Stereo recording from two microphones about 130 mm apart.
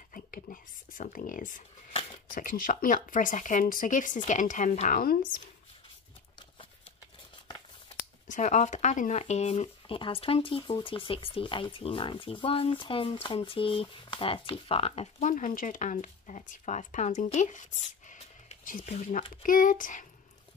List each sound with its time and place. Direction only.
0.1 s speech: 90° left
1.9 s a sound: 50° left (ahead or behind)
2.3 s speech: 90° left
4.3 s speech: 75° left (ahead or behind); by 5.3 s 90° left
8.3 s speech: 65° left (ahead or behind)
9.2 s speech: 55° left (ahead or behind); by 20.1 s 85° left